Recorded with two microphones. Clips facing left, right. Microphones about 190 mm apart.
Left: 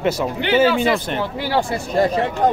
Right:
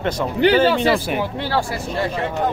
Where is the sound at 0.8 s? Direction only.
5° right (ahead or behind).